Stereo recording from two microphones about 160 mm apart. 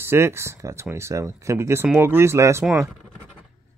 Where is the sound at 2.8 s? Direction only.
10° right (ahead or behind).